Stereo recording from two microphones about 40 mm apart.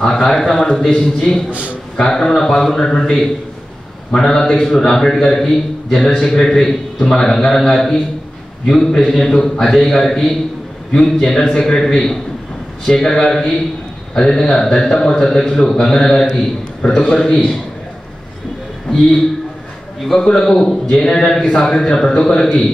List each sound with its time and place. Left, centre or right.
0.0 s a man's voice: centre
11.1 s a man's voice: centre
20.2 s a man's voice: centre